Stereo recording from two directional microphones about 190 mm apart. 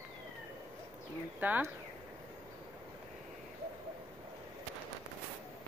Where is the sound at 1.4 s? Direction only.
10° right (ahead or behind).